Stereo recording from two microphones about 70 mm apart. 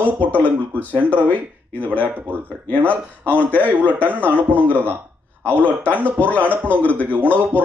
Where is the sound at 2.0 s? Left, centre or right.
Right.